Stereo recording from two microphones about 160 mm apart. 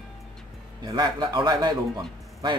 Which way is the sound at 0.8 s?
25° right (ahead or behind).